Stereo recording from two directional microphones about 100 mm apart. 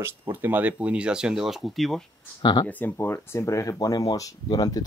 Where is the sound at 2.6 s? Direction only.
20° left (ahead or behind).